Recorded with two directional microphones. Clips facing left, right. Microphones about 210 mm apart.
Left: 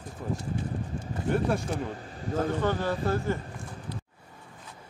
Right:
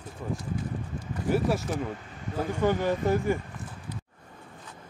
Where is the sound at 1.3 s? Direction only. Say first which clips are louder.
Right 1 dB; 5° right (ahead or behind).